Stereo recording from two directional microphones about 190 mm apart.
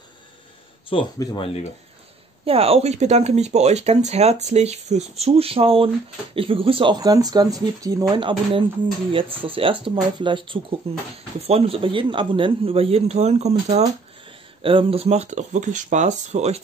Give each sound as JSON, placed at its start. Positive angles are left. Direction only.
{"t": 0.8, "sound": "speech", "side_deg": 25}
{"t": 2.4, "sound": "speech", "side_deg": -30}